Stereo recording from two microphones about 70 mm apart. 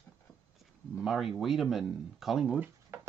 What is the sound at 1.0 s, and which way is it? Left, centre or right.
Speech, centre.